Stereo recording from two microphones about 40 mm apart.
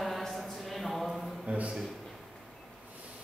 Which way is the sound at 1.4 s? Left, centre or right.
Right.